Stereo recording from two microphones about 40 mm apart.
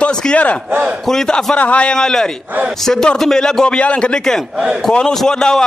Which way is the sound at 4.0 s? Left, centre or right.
Centre.